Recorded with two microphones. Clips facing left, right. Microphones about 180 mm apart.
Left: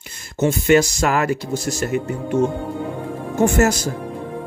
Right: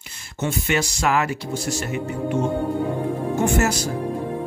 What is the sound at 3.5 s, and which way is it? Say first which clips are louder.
Speech: left 4 dB; 45° left (ahead or behind).